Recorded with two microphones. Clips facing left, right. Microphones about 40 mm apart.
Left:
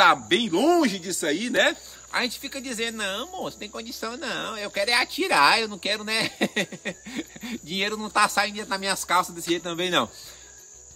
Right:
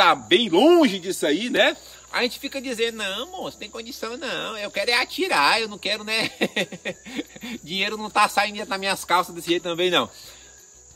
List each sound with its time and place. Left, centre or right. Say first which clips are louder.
0.0 s speech: right 1 dB; centre